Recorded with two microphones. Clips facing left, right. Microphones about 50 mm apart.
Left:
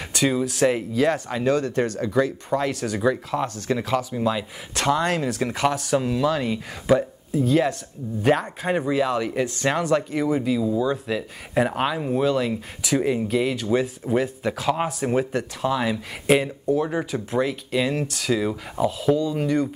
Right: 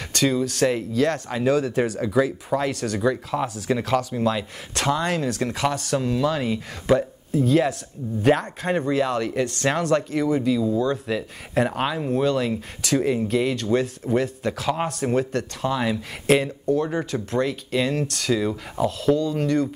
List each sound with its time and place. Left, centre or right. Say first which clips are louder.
0.1 s speech: even; centre